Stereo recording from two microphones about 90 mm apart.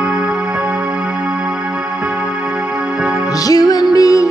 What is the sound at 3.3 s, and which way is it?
Music, 45° left (ahead or behind).